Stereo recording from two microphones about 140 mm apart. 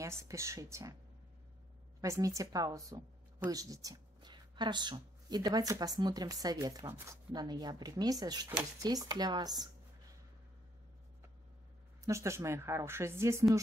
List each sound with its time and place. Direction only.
0.0 s speech: 20° right (ahead or behind)
2.0 s speech: 25° right (ahead or behind)
12.0 s speech: 20° right (ahead or behind)